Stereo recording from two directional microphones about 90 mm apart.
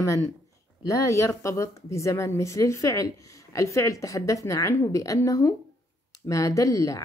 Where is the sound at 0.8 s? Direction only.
35° left (ahead or behind).